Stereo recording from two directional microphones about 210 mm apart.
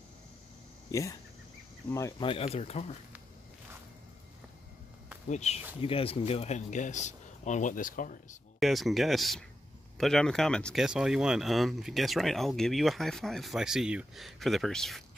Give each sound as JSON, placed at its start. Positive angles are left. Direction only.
{"t": 0.9, "sound": "speech", "side_deg": 15}
{"t": 5.3, "sound": "speech", "side_deg": 30}
{"t": 8.5, "sound": "speech", "side_deg": 0}